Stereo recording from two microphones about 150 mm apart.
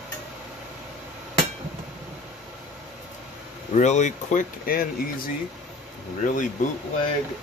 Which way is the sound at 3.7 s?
50° left (ahead or behind).